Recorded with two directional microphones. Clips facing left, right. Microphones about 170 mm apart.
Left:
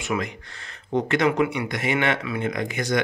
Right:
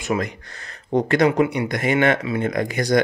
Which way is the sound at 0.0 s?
40° right (ahead or behind).